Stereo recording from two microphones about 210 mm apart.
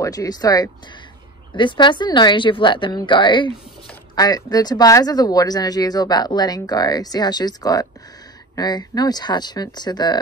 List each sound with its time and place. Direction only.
0.0 s speech: 15° left (ahead or behind)